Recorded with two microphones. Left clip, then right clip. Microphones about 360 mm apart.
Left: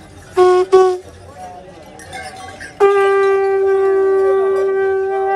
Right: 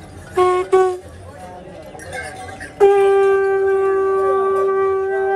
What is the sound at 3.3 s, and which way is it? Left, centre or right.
Shofar, centre.